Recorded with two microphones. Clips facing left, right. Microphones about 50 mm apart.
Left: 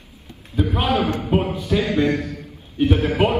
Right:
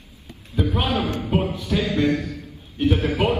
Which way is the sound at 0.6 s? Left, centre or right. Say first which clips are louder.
Left 3 dB; left.